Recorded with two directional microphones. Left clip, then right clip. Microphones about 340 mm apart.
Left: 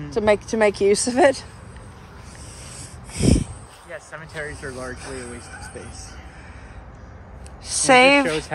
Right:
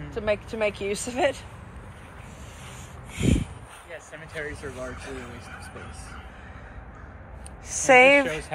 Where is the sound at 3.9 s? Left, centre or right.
Left.